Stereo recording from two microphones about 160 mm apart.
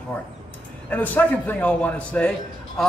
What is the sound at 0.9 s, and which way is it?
A man's voice, 10° left (ahead or behind).